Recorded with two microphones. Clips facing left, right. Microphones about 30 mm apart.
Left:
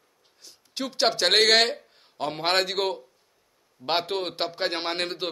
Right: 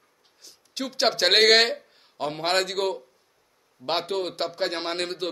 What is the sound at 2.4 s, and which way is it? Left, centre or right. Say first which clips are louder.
A man's voice: even; centre.